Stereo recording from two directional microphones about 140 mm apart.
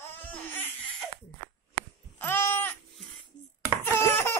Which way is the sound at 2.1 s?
15° left (ahead or behind).